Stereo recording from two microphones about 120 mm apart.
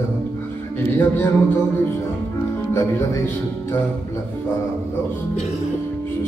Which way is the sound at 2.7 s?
25° left (ahead or behind).